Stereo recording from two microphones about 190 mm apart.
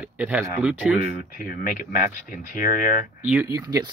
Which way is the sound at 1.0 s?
45° left (ahead or behind).